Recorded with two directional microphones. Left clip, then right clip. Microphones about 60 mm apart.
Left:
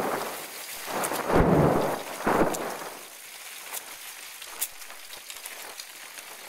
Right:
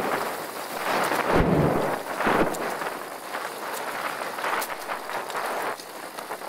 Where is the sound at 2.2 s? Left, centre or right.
Right.